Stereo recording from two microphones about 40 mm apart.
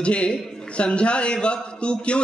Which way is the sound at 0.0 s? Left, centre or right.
Left.